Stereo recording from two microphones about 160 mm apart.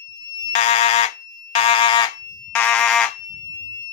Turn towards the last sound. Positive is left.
turn(degrees=20)  # may be behind; listen again after turning